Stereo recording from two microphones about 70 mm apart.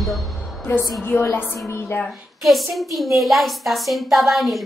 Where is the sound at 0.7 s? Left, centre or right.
Left.